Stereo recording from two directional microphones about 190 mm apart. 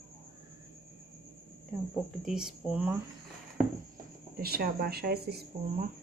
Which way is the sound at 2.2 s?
5° right (ahead or behind).